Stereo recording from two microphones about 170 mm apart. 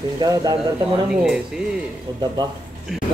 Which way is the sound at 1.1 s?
5° right (ahead or behind).